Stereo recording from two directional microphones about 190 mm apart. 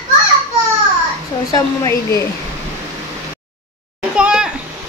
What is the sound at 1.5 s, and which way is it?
Speech, 15° left (ahead or behind).